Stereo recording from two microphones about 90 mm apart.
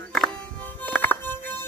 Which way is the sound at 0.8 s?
20° left (ahead or behind).